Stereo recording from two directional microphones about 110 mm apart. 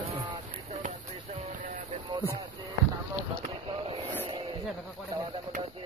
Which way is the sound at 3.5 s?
55° right (ahead or behind).